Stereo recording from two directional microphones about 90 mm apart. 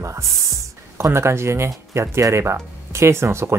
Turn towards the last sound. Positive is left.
turn(degrees=-30)  # may be behind; listen again after turning